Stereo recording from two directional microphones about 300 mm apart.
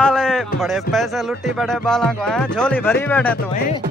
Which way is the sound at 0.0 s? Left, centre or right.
Centre.